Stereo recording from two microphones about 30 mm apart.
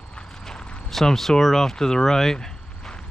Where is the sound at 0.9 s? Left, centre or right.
Centre.